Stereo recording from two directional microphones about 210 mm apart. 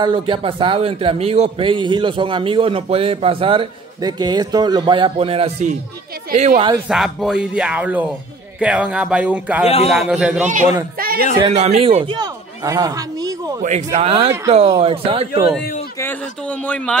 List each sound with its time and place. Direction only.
0.0 s a man's voice: 25° right (ahead or behind)
6.9 s speech: centre (ahead or behind)
10.4 s a woman's voice: 35° right (ahead or behind)
11.0 s a sound: 45° right (ahead or behind)
11.5 s a man's voice: 30° right (ahead or behind)
13.6 s a woman's voice: 35° right (ahead or behind)
16.0 s a man's voice: 10° left (ahead or behind)